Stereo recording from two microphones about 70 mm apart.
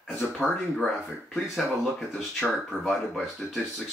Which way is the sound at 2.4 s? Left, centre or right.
Centre.